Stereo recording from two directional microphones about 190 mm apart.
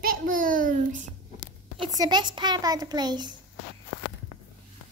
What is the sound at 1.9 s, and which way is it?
A child's voice, 25° right (ahead or behind).